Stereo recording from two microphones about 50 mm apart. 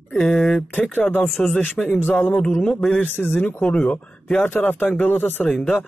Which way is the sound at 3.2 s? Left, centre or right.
Left.